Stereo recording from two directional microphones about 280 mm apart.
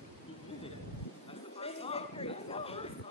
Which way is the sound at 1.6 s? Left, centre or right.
Left.